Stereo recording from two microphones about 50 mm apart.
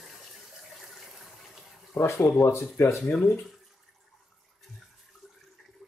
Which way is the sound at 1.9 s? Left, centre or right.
Centre.